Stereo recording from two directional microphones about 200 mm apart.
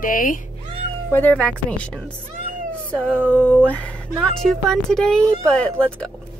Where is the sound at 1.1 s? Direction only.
10° left (ahead or behind).